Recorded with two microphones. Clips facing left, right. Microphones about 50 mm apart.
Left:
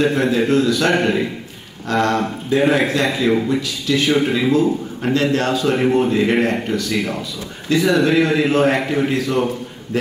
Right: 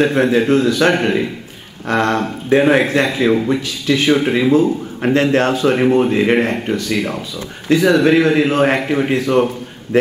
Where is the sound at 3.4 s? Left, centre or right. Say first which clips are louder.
Right 3 dB; right.